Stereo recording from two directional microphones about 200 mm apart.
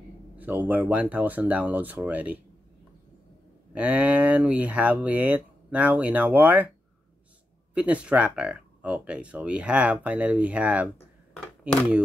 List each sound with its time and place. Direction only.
0.4 s speech: 10° right (ahead or behind)
3.7 s speech: 5° right (ahead or behind)
7.7 s speech: 5° right (ahead or behind)